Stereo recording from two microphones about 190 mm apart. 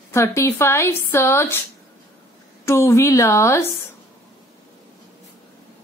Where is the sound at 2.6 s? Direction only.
15° left (ahead or behind).